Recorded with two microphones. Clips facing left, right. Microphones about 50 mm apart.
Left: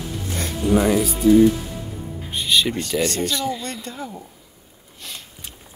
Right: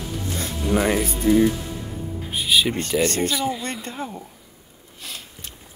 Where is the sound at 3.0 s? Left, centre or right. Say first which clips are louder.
Right 1 dB; right.